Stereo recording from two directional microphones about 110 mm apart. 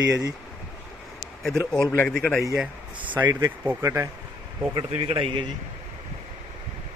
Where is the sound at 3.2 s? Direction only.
35° right (ahead or behind).